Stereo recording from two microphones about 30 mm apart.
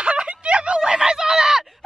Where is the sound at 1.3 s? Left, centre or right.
Centre.